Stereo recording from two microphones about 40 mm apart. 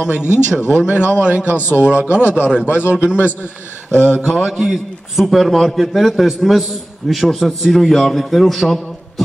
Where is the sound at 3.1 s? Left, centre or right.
Left.